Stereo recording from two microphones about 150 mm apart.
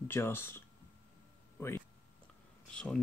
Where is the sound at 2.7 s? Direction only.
5° left (ahead or behind).